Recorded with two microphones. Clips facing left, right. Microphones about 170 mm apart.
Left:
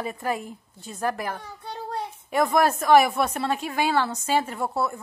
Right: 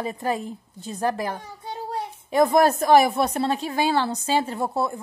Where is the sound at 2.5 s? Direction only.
35° right (ahead or behind).